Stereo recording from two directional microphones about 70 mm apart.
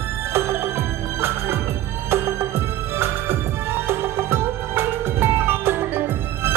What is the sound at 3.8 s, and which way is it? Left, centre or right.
Music, right.